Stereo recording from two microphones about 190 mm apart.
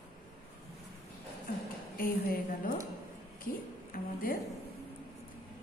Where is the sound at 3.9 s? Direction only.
50° left (ahead or behind).